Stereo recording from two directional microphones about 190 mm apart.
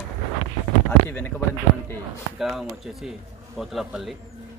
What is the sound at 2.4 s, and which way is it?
Speech, centre (ahead or behind).